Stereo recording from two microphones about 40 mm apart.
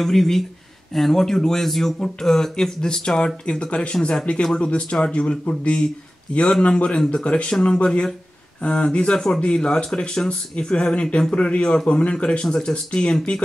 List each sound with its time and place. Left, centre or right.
0.0 s speech: centre
3.7 s speech: left